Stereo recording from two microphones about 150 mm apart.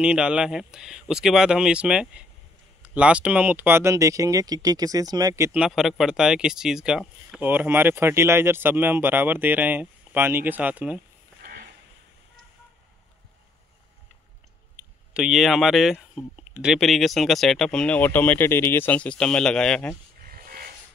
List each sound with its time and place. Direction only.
0.0 s speech: 5° right (ahead or behind); by 5.5 s 20° right (ahead or behind)
5.5 s speech: 5° right (ahead or behind)
14.8 s speech: 5° right (ahead or behind)
20.2 s a sound: 70° right (ahead or behind)